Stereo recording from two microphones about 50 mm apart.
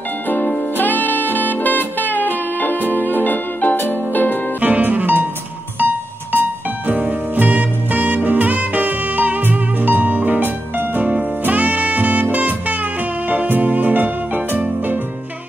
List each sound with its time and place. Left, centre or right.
0.7 s music: left
4.6 s music: right
6.9 s music: right